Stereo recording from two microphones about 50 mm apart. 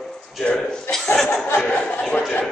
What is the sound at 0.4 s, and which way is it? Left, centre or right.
Speech, centre.